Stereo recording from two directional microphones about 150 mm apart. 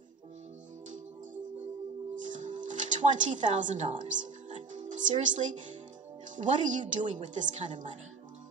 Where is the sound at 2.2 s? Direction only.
55° right (ahead or behind).